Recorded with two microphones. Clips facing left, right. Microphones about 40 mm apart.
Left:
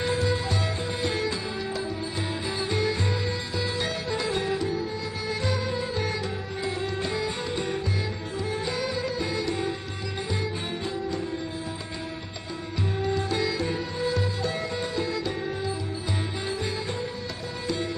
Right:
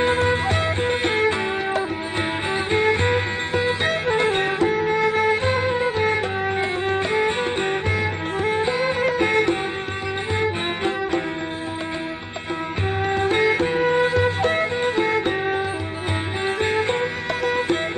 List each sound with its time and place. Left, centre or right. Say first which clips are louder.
0.0 s music: right 7 dB; right
13.0 s music: right 8 dB; right